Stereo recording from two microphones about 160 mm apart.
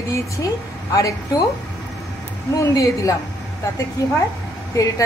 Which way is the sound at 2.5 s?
20° left (ahead or behind).